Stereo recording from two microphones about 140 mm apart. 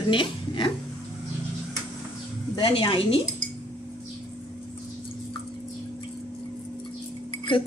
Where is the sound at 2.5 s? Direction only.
35° left (ahead or behind).